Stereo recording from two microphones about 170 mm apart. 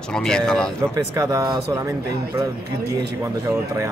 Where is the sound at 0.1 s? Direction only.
5° left (ahead or behind).